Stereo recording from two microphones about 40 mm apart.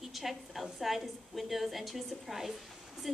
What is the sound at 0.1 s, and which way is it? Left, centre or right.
A woman's voice, centre.